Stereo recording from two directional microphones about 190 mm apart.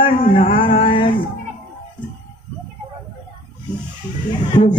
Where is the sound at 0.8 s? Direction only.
25° left (ahead or behind).